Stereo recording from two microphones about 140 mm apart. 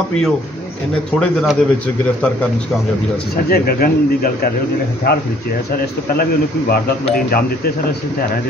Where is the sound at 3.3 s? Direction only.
90° left.